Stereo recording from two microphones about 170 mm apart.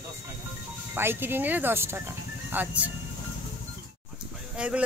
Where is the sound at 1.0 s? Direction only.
15° right (ahead or behind).